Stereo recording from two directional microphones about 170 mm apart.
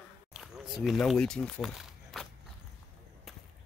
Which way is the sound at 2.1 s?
Centre (ahead or behind).